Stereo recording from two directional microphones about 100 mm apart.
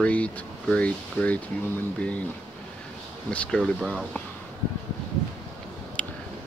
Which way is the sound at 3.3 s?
10° left (ahead or behind).